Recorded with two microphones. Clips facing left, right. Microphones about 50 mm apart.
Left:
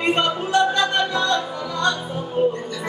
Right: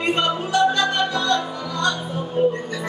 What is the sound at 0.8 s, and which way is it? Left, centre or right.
Music, centre.